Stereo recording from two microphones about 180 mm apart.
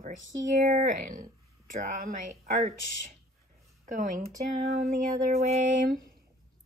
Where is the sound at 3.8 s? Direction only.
45° right (ahead or behind).